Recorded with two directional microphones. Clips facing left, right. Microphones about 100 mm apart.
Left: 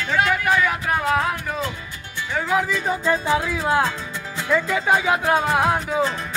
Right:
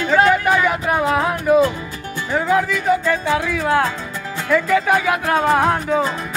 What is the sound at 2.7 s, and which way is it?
Speech, 25° left (ahead or behind).